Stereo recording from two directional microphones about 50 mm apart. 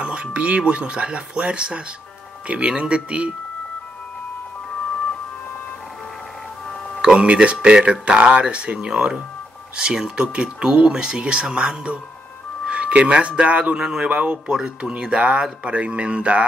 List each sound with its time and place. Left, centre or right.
0.0 s speech: right
7.0 s speech: right
13.7 s speech: centre
14.0 s speech: right